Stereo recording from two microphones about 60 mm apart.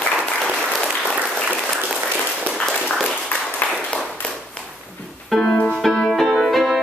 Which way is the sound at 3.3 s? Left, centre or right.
Left.